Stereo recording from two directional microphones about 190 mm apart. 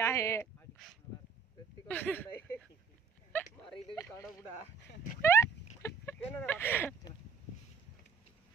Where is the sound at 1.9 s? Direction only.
10° left (ahead or behind).